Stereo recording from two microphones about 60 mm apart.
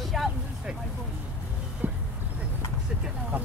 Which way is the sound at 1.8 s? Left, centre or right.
Right.